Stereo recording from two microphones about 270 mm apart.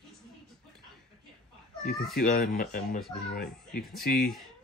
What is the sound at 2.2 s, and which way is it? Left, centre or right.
A child's voice, left.